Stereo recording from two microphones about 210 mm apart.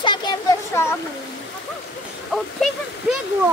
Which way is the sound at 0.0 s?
20° left (ahead or behind).